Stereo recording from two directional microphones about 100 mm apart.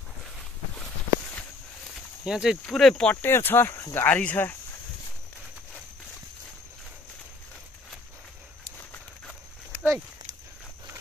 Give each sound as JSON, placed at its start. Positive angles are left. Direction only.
{"t": 2.2, "sound": "speech", "side_deg": -5}
{"t": 2.6, "sound": "speech", "side_deg": 5}
{"t": 3.2, "sound": "speech", "side_deg": 20}